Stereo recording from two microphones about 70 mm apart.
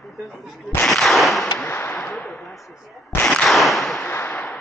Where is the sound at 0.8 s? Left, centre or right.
Centre.